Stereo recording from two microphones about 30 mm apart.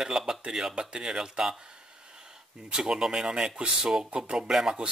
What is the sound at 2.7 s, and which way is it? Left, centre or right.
Speech, right.